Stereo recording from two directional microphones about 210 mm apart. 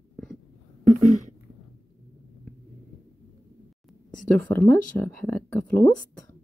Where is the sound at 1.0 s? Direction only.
35° right (ahead or behind).